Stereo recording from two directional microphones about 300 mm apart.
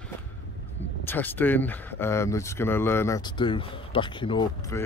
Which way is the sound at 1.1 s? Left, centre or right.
Centre.